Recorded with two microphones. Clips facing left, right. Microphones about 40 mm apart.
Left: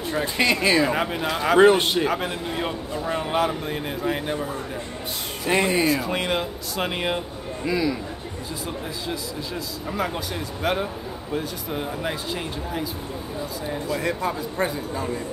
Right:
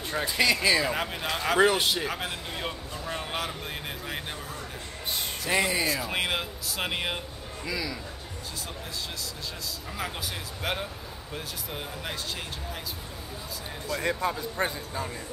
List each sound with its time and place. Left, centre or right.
0.2 s speech: left
0.8 s speech: centre
1.6 s speech: left
2.0 s speech: centre
5.5 s speech: left
5.9 s speech: centre
7.6 s speech: left
9.9 s speech: centre